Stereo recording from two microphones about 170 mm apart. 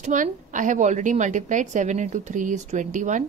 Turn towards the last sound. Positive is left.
turn(degrees=-45)  # may be behind; listen again after turning